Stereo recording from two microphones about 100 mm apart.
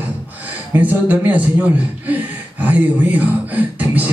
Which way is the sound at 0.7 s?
15° right (ahead or behind).